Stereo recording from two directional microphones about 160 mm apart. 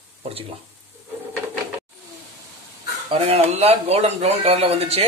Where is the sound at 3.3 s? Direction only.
40° right (ahead or behind).